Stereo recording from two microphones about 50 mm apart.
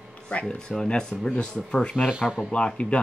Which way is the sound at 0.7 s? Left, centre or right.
Centre.